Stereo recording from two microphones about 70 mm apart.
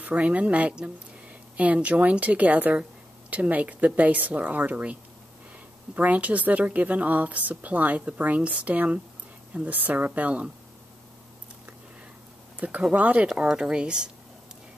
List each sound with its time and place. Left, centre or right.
0.0 s a woman's voice: centre
5.9 s a woman's voice: right
12.5 s a woman's voice: centre